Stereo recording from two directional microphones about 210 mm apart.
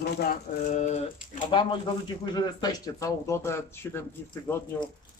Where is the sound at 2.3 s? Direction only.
20° left (ahead or behind).